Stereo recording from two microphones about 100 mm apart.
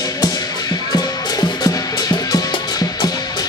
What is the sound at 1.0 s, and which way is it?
Music, 40° left (ahead or behind).